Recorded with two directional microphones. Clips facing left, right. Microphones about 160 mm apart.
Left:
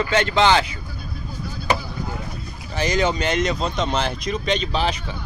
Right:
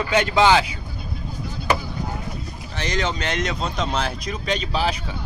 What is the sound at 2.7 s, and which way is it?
Speech, 5° left (ahead or behind).